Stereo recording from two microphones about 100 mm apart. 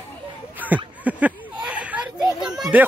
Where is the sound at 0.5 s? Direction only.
15° right (ahead or behind).